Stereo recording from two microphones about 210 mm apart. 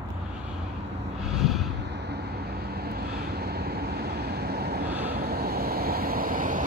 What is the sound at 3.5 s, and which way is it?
Vehicle, 50° right (ahead or behind).